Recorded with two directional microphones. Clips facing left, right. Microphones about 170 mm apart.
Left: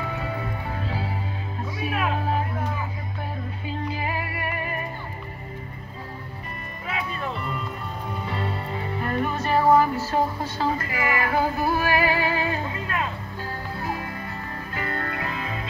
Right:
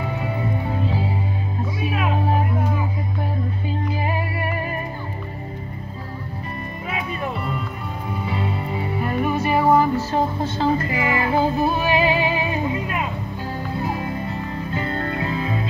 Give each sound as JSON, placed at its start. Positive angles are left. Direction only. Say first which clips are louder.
{"t": 0.2, "sound": "music", "louder": "right 5 dB", "side_deg": -20}
{"t": 4.0, "sound": "music", "louder": "right 4 dB", "side_deg": -35}
{"t": 7.1, "sound": "music", "louder": "right 4 dB", "side_deg": -15}